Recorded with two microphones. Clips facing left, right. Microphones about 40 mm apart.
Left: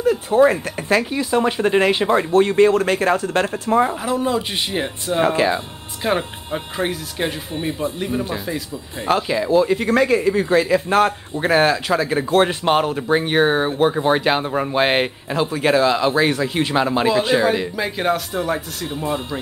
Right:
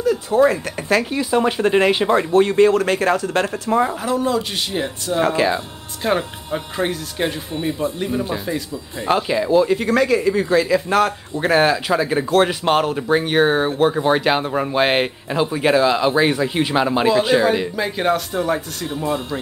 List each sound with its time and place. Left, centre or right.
0.0 s a sound: left
0.5 s a man's voice: left
1.1 s speech: centre
2.4 s a man's voice: left
3.9 s speech: centre
6.0 s speech: centre
7.5 s speech: left
8.0 s speech: centre
9.8 s a man's voice: left
11.3 s speech: centre
12.4 s speech: centre